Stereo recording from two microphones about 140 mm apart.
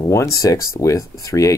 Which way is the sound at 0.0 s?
20° left (ahead or behind).